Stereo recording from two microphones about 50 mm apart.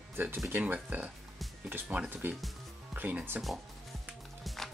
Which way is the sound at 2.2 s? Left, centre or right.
Right.